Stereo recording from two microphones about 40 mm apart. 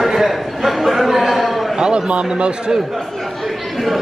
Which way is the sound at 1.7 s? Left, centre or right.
Right.